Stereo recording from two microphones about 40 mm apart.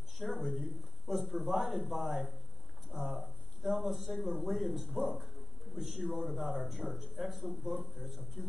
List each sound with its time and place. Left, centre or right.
0.3 s speech: right
0.6 s speech: centre